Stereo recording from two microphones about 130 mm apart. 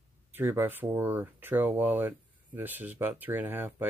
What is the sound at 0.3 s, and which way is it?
Speech, 15° right (ahead or behind).